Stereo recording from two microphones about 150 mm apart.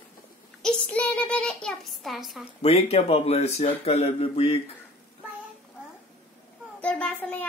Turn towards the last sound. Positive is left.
turn(degrees=10)  # may be behind; listen again after turning